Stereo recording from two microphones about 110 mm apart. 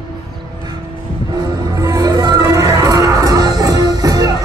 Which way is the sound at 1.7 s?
35° right (ahead or behind).